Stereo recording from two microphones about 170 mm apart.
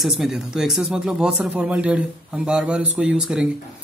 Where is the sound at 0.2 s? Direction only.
Centre (ahead or behind).